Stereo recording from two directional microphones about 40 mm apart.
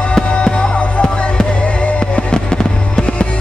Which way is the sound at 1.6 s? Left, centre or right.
Left.